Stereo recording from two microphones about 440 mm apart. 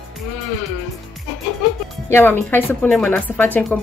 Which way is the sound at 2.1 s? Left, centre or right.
Centre.